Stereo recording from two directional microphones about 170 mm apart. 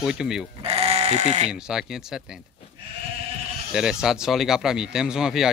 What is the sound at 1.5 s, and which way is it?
Speech, 5° right (ahead or behind).